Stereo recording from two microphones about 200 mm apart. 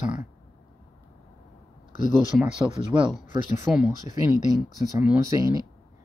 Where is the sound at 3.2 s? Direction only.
40° left (ahead or behind).